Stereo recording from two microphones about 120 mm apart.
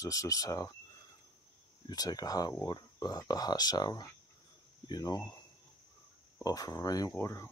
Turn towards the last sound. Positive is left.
turn(degrees=20)  # may be behind; listen again after turning